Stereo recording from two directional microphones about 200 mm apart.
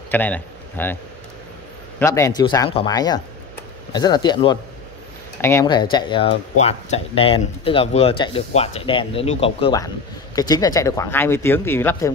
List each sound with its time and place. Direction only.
0.1 s a man's voice: 10° left (ahead or behind)
2.0 s speech: 15° left (ahead or behind)